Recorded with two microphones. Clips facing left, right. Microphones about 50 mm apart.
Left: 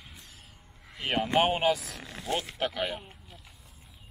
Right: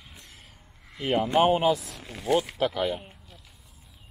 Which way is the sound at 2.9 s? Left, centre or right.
Centre.